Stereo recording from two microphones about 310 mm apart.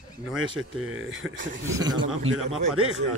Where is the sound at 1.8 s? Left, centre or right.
Centre.